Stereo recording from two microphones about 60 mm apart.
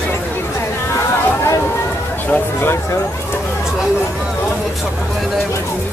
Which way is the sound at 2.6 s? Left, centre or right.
Left.